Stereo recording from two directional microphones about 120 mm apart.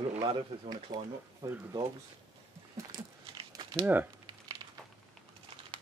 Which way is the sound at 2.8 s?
25° right (ahead or behind).